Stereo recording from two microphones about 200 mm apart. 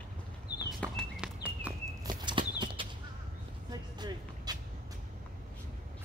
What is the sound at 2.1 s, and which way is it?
Clip-clop, 20° right (ahead or behind).